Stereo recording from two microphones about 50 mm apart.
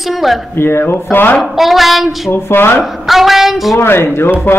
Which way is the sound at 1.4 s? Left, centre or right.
Centre.